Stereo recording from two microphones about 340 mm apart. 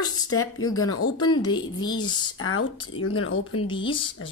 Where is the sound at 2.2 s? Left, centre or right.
Left.